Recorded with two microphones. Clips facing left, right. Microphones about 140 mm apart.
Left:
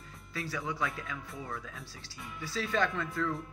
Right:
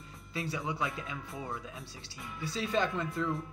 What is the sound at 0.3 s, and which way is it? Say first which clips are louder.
Speech: right 1 dB; 25° right (ahead or behind).